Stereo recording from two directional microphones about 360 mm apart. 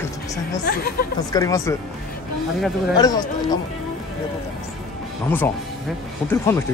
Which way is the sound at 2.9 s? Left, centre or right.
Centre.